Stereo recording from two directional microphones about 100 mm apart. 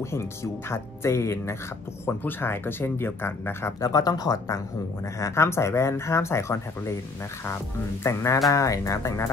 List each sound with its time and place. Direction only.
0.0 s speech: 30° left (ahead or behind)
5.2 s speech: 25° left (ahead or behind)
8.0 s speech: 30° left (ahead or behind)